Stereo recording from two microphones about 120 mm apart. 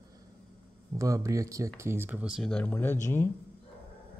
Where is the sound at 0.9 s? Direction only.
25° right (ahead or behind).